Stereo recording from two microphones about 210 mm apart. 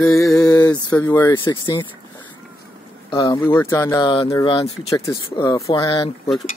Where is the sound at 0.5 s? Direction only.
15° left (ahead or behind).